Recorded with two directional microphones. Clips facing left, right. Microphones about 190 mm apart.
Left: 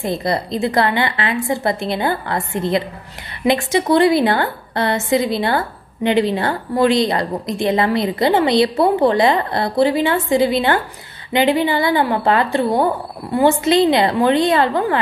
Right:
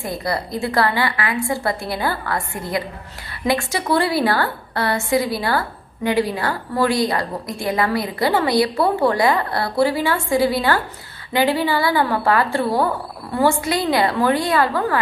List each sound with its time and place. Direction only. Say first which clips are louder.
0.0 s a woman's voice: left 4 dB; 20° left (ahead or behind)